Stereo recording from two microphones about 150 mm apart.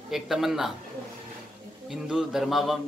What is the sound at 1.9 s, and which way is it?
Speech, 5° right (ahead or behind).